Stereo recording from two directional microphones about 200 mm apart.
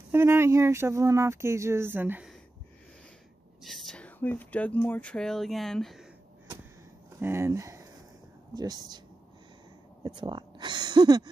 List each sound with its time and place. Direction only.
0.1 s speech: 10° right (ahead or behind)
3.6 s speech: centre (ahead or behind)
7.2 s speech: 10° right (ahead or behind)
10.0 s speech: 20° right (ahead or behind)